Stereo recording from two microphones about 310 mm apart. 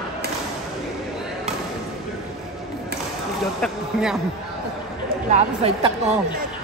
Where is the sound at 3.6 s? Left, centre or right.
Centre.